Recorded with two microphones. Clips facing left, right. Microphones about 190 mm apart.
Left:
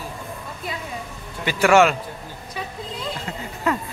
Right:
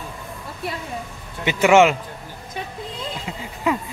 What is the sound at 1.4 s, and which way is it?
Speech, 20° right (ahead or behind).